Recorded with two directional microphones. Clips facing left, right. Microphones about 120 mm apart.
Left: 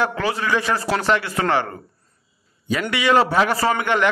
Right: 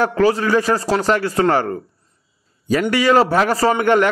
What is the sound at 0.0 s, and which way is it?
A man's voice, 40° right (ahead or behind).